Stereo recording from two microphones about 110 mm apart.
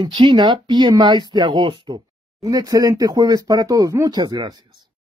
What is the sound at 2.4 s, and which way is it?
Speech, 30° right (ahead or behind).